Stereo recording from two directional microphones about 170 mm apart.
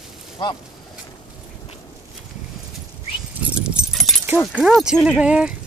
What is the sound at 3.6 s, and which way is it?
Dog, 5° right (ahead or behind).